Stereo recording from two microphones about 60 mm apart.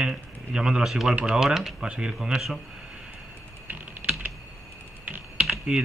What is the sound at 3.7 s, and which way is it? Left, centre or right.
Typing, right.